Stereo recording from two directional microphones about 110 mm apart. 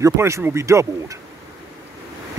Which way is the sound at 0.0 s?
25° right (ahead or behind).